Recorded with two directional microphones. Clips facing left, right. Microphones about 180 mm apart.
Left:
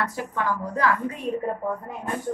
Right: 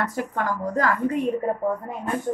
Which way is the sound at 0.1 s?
45° right (ahead or behind).